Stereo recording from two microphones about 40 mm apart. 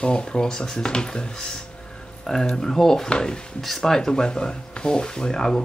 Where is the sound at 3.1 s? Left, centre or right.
Left.